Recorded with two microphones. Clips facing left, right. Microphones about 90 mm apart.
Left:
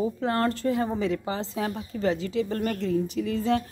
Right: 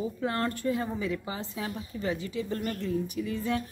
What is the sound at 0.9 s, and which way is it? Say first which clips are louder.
Speech: left 5 dB; 60° left (ahead or behind).